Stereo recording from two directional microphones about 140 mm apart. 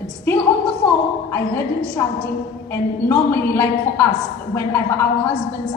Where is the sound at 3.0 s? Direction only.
15° left (ahead or behind).